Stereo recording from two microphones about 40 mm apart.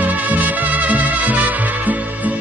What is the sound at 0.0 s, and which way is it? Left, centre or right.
Music, right.